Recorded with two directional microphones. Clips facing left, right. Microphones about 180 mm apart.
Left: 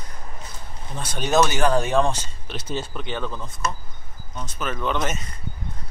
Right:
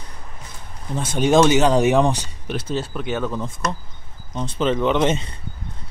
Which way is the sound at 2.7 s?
5° right (ahead or behind).